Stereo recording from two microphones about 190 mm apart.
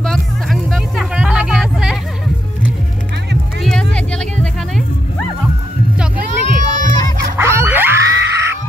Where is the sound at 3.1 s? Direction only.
60° right (ahead or behind).